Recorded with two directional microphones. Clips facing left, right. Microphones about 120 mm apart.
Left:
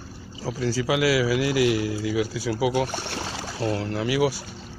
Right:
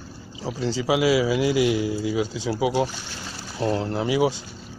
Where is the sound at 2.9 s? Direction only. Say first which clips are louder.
Left 6 dB; 65° left (ahead or behind).